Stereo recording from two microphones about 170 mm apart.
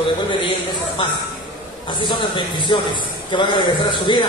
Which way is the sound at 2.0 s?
25° left (ahead or behind).